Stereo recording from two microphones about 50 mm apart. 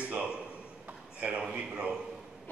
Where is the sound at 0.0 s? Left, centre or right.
Right.